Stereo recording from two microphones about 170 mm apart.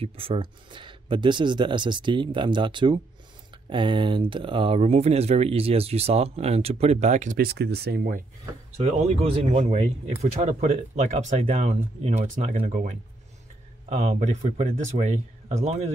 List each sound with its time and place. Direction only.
0.0 s speech: 35° right (ahead or behind); by 8.2 s 65° right (ahead or behind)
8.7 s speech: 40° right (ahead or behind)